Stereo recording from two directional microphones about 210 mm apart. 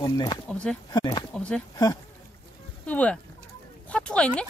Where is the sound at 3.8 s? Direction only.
5° left (ahead or behind).